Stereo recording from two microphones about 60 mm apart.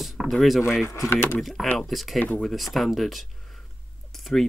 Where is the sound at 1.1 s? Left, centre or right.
Left.